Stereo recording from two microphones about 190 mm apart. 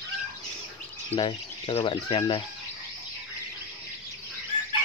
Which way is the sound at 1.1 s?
25° left (ahead or behind).